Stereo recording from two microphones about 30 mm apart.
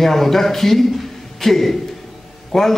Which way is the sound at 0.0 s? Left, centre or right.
Centre.